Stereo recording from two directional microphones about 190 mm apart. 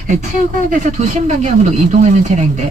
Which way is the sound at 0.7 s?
40° right (ahead or behind).